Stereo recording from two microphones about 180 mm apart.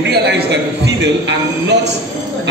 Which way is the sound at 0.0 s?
65° right (ahead or behind).